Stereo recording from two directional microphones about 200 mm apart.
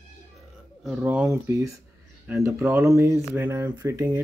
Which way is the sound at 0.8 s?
5° right (ahead or behind).